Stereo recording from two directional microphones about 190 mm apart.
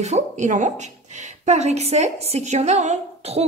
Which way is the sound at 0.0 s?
40° right (ahead or behind).